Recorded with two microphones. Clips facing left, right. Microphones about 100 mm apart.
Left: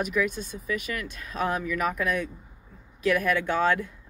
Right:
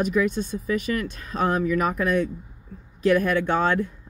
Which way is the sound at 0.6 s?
35° right (ahead or behind).